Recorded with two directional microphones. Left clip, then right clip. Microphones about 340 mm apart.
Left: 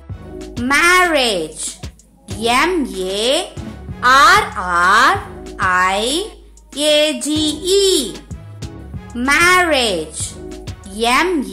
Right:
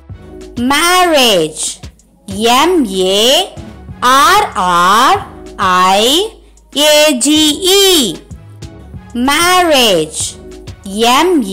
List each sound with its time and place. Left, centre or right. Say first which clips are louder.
0.7 s speech: right 3 dB; centre
9.1 s speech: right 2 dB; centre